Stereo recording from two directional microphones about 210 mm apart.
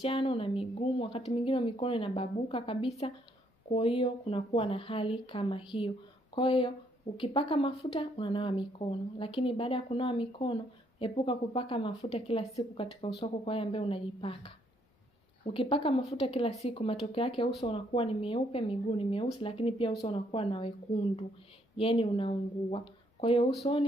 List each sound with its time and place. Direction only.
0.0 s speech: 25° left (ahead or behind)
15.5 s speech: 25° left (ahead or behind)
21.7 s speech: 25° left (ahead or behind)